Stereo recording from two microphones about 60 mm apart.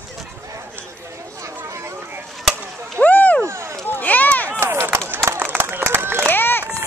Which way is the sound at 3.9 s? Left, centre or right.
Left.